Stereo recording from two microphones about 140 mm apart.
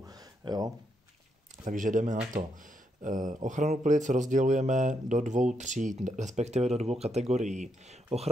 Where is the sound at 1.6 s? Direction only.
65° right (ahead or behind).